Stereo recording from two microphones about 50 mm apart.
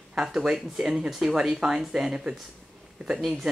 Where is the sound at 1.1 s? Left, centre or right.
Centre.